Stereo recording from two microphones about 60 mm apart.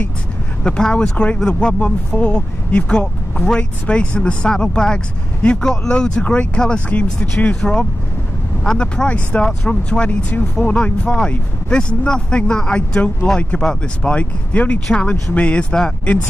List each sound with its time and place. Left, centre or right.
0.7 s speech: centre
14.5 s speech: left